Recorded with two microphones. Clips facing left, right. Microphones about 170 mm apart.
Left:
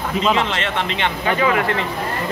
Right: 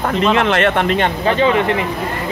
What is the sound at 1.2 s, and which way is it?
Speech, 30° right (ahead or behind).